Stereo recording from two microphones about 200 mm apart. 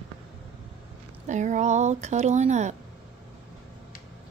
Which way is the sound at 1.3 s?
35° right (ahead or behind).